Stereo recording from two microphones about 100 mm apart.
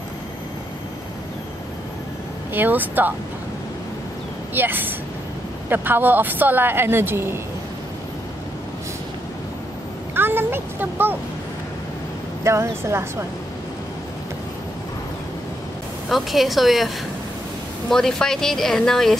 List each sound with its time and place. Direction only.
2.5 s speech: 20° right (ahead or behind)
4.6 s speech: 20° right (ahead or behind)
10.1 s a sound: 20° right (ahead or behind)
12.4 s speech: 25° right (ahead or behind)
16.1 s speech: centre (ahead or behind)